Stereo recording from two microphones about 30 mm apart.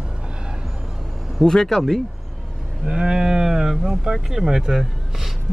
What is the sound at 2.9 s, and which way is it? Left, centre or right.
Cattle, right.